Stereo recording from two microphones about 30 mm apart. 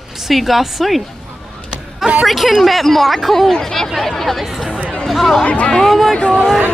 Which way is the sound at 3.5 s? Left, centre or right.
Centre.